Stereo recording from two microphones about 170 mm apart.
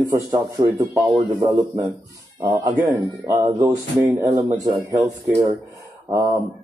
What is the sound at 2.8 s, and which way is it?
Speech, 15° right (ahead or behind).